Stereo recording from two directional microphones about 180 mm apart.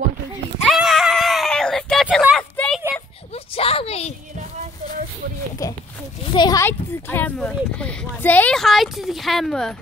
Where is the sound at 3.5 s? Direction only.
30° left (ahead or behind).